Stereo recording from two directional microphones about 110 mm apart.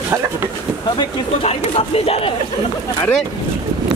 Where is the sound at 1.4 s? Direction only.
65° left (ahead or behind).